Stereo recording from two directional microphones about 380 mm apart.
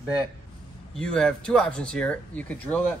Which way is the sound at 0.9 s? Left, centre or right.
Centre.